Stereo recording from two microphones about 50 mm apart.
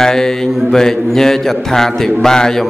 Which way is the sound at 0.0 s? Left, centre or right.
Centre.